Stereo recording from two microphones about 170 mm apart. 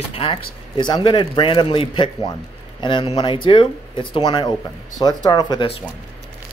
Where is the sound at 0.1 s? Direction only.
35° left (ahead or behind).